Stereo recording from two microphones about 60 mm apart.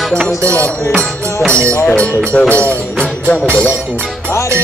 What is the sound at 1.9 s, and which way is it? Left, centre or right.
Speech, centre.